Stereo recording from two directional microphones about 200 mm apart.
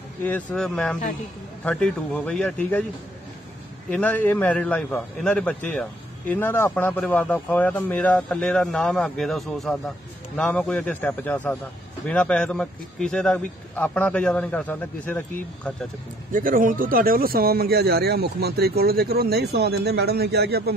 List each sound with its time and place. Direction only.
0.2 s a man's voice: 5° left (ahead or behind)
3.9 s a man's voice: 10° left (ahead or behind)
16.3 s speech: 40° right (ahead or behind)